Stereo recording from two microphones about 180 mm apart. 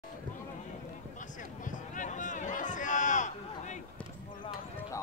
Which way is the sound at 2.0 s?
45° left (ahead or behind).